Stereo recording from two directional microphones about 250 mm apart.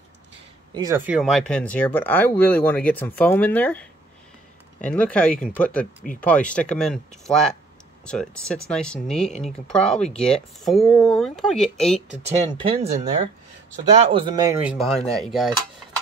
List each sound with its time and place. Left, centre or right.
0.7 s speech: centre
4.8 s speech: centre
12.3 s speech: right
13.9 s speech: right; by 15.5 s centre